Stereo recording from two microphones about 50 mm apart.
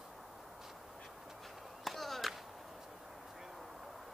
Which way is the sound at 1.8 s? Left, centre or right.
Centre.